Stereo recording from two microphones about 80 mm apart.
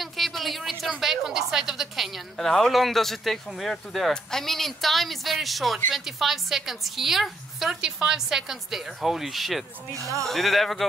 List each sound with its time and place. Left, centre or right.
0.0 s a woman's voice: centre
9.9 s speech: right
10.2 s a woman's voice: centre